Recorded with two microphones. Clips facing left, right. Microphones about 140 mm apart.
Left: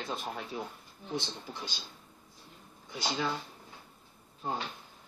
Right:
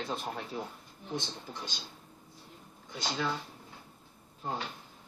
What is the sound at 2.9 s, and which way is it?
Speech, 5° left (ahead or behind).